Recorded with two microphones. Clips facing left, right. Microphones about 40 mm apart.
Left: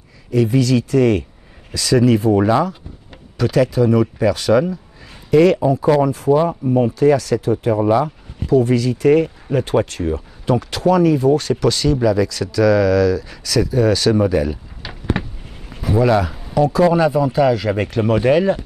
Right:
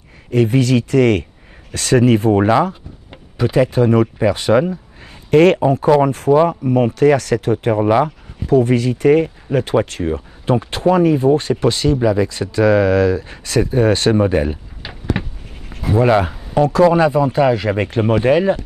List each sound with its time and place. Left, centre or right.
0.3 s speech: right
3.3 s speech: right
3.7 s speech: right
5.3 s speech: right
7.5 s speech: right
15.2 s a sound: centre
15.9 s speech: right